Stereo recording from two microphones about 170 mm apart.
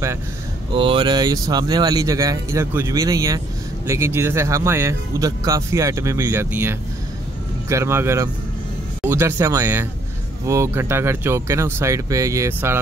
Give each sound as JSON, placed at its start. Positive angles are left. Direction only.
{"t": 0.7, "sound": "speech", "side_deg": -30}